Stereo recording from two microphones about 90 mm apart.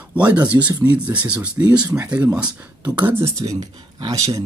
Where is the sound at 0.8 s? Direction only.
15° right (ahead or behind).